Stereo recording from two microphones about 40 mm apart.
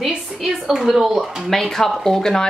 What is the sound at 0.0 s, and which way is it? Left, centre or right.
Speech, centre.